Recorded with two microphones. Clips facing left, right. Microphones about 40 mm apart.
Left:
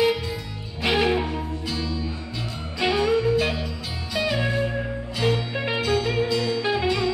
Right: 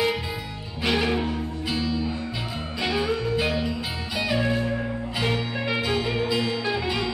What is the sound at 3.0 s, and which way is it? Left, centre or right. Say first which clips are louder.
Music: left 4 dB; centre.